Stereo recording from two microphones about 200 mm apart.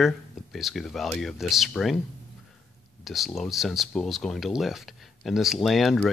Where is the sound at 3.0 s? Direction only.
Centre (ahead or behind).